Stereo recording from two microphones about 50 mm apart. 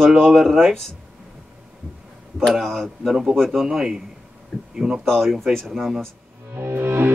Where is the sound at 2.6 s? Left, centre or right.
Centre.